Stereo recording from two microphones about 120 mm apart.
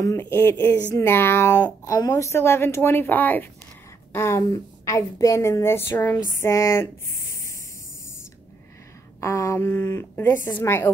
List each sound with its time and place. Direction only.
0.2 s speech: 20° left (ahead or behind)
9.2 s speech: 25° left (ahead or behind)